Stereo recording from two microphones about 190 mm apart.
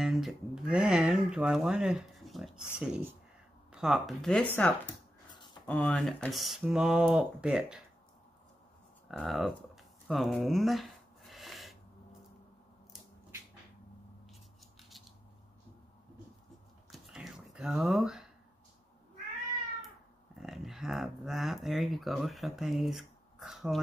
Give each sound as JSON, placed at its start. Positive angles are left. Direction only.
{"t": 0.0, "sound": "speech", "side_deg": 0}
{"t": 5.3, "sound": "a sound", "side_deg": 25}
{"t": 5.7, "sound": "speech", "side_deg": 5}
{"t": 9.1, "sound": "speech", "side_deg": 0}
{"t": 10.0, "sound": "a sound", "side_deg": 0}
{"t": 14.8, "sound": "scissors", "side_deg": 0}
{"t": 16.9, "sound": "whispering", "side_deg": 0}
{"t": 20.3, "sound": "speech", "side_deg": 0}